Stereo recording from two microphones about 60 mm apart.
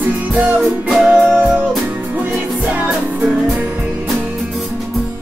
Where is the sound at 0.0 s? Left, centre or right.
Right.